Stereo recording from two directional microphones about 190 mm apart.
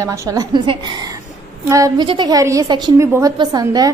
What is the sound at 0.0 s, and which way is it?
A woman's voice, 15° right (ahead or behind).